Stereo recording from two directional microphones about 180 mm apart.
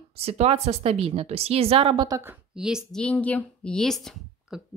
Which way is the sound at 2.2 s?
10° right (ahead or behind).